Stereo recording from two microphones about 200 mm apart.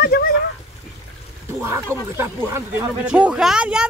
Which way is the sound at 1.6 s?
10° right (ahead or behind).